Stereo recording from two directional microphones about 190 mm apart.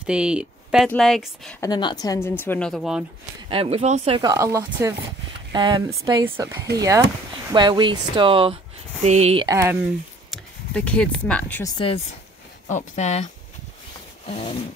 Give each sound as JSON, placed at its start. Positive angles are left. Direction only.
{"t": 0.0, "sound": "speech", "side_deg": -5}
{"t": 1.6, "sound": "speech", "side_deg": 20}
{"t": 3.4, "sound": "speech", "side_deg": -30}
{"t": 4.2, "sound": "speech", "side_deg": -15}
{"t": 9.5, "sound": "speech", "side_deg": -15}
{"t": 10.3, "sound": "speech", "side_deg": 5}
{"t": 12.6, "sound": "speech", "side_deg": 40}